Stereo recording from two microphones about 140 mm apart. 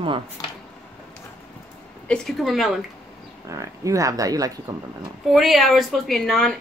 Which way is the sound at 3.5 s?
25° right (ahead or behind).